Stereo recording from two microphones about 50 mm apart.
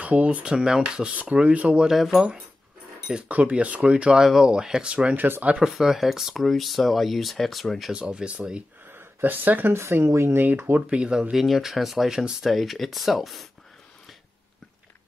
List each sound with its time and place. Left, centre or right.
0.0 s speech: right
1.9 s speech: centre
3.3 s speech: right
4.2 s speech: centre
5.1 s speech: right
5.6 s speech: centre
7.9 s speech: centre
8.9 s speech: right
10.0 s speech: right
10.9 s speech: centre
11.3 s speech: centre